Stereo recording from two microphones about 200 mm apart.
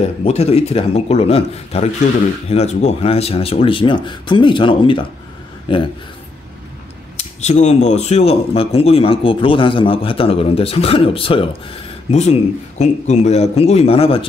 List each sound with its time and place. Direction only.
0.2 s speech: 30° left (ahead or behind)
7.2 s speech: 35° left (ahead or behind)